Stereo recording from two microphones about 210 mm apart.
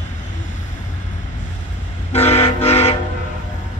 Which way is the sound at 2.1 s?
30° left (ahead or behind).